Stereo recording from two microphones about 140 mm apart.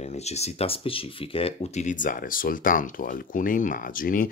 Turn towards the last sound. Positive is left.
turn(degrees=80)